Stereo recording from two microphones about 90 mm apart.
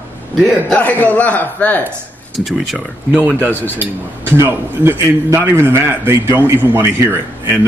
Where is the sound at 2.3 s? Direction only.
Centre (ahead or behind).